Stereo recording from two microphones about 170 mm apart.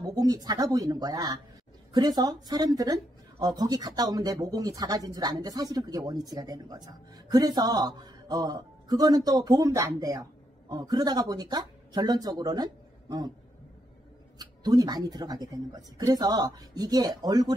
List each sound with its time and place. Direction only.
0.0 s speech: 20° right (ahead or behind)
14.4 s speech: 25° right (ahead or behind)